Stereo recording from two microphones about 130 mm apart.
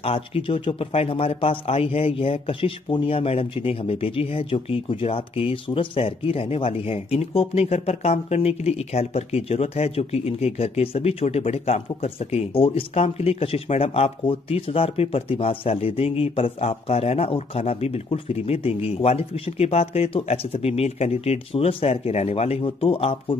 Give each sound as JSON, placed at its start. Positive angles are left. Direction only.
{"t": 0.0, "sound": "speech", "side_deg": 45}